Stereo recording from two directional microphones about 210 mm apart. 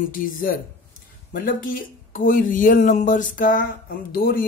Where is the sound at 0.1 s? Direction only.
40° left (ahead or behind).